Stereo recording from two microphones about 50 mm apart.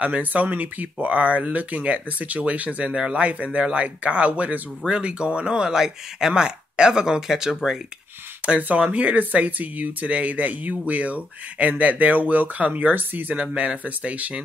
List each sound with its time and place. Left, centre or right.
0.0 s speech: right; by 7.8 s centre
8.5 s speech: right
13.6 s speech: right